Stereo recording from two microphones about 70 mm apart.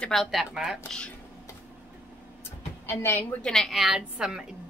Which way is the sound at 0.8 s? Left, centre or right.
Centre.